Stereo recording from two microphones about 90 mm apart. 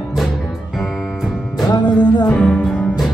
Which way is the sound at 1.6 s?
55° left (ahead or behind).